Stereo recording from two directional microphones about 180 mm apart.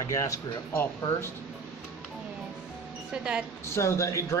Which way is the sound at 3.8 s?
15° left (ahead or behind).